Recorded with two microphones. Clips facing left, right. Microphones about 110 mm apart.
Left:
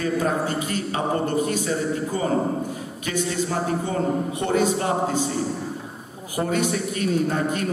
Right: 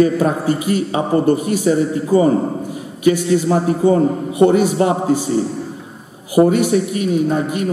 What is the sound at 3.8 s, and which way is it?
Speech, 10° right (ahead or behind).